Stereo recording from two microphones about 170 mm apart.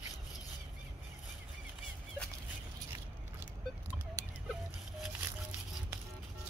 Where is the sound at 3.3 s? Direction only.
15° right (ahead or behind).